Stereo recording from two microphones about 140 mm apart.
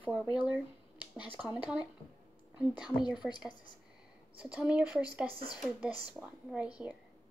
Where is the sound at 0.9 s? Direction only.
35° left (ahead or behind).